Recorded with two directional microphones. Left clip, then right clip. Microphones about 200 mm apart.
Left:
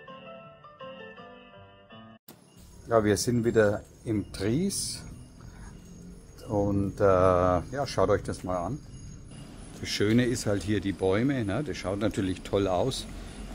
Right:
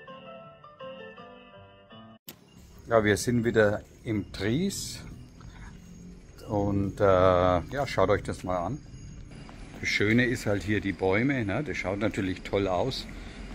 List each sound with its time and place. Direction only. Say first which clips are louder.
0.9 s music: even; 15° left (ahead or behind)
2.9 s speech: right 1 dB; 5° left (ahead or behind)
6.4 s speech: left 1 dB; centre (ahead or behind)
9.8 s speech: right 2 dB; 10° left (ahead or behind)